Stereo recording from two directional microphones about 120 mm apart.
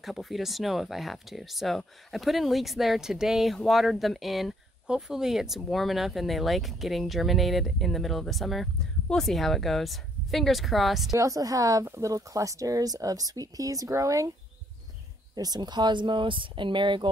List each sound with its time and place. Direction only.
0.0 s speech: centre (ahead or behind)
11.1 s speech: 25° right (ahead or behind)
15.3 s speech: 35° right (ahead or behind)